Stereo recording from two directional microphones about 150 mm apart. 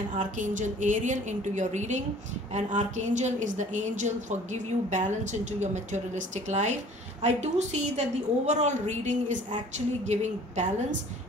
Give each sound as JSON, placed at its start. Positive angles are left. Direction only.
{"t": 0.1, "sound": "a woman's voice", "side_deg": -55}